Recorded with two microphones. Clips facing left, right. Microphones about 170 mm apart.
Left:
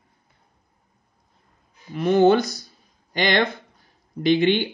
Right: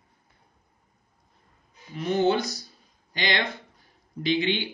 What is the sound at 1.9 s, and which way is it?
Speech, 55° left (ahead or behind).